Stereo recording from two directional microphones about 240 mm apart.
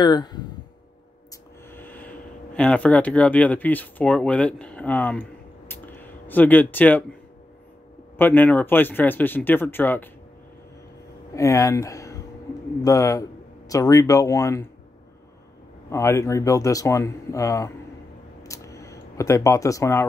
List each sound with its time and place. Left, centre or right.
0.0 s speech: centre
1.7 s speech: centre
5.7 s a sound: centre
8.2 s speech: centre
11.3 s speech: centre
15.9 s speech: centre
18.4 s a sound: centre